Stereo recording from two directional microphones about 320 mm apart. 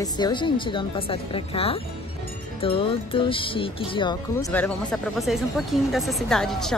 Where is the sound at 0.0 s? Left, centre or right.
Centre.